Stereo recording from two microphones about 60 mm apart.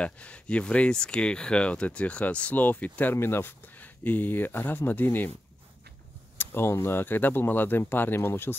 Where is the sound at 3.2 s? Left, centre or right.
Left.